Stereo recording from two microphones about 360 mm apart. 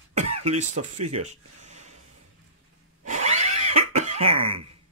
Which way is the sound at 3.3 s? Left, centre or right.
Centre.